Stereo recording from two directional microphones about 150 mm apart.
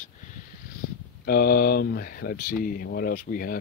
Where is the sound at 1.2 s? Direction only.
85° left.